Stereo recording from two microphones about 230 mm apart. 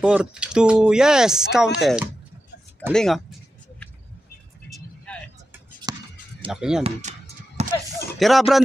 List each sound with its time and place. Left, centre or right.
0.0 s speech: centre
2.9 s speech: centre
4.6 s vehicle: centre
5.9 s a sound: centre
6.5 s speech: centre
6.8 s a sound: right
8.2 s speech: centre